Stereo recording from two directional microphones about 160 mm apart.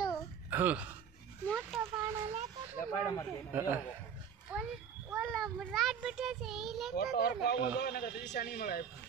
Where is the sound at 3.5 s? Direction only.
15° right (ahead or behind).